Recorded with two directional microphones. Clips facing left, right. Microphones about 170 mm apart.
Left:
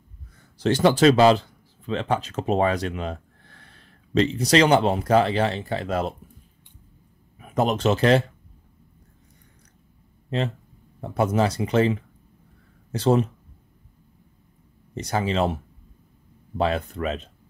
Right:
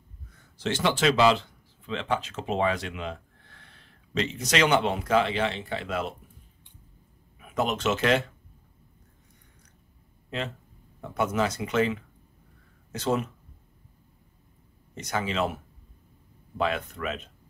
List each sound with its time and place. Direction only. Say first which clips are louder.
0.6 s speech: left 8 dB; 40° left (ahead or behind)
7.3 s speech: left 5 dB; 35° left (ahead or behind)
11.0 s speech: left 5 dB; 35° left (ahead or behind)
15.0 s speech: left 5 dB; 35° left (ahead or behind)